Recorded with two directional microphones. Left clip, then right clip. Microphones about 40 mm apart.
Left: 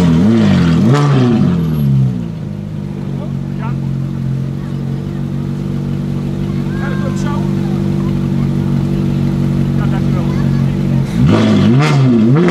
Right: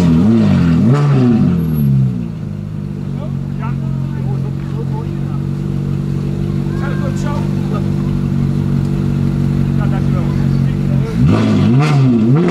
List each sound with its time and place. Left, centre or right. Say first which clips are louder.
0.0 s vehicle: left 1 dB; left
7.9 s vehicle: left 2 dB; left